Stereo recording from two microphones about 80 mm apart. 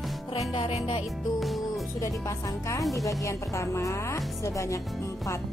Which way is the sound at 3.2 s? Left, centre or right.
Left.